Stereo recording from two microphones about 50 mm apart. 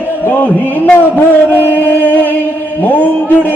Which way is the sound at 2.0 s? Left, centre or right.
Left.